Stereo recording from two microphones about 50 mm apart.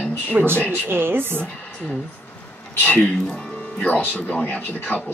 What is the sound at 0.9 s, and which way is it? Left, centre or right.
Speech, right.